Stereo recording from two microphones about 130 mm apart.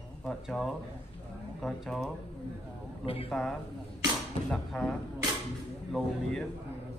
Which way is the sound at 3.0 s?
45° left (ahead or behind).